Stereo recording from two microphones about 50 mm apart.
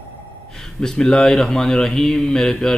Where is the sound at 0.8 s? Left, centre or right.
Centre.